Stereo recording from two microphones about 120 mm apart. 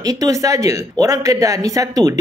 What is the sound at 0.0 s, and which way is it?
Speech, 30° right (ahead or behind).